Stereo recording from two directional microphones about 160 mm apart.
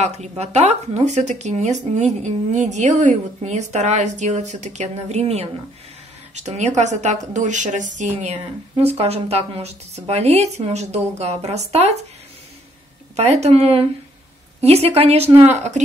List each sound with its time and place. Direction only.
0.0 s speech: 45° right (ahead or behind)
13.1 s speech: 40° right (ahead or behind)